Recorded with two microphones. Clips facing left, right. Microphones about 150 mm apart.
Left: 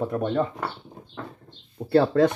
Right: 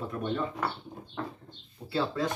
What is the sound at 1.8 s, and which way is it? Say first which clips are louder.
Speech: left 11 dB; 55° left (ahead or behind).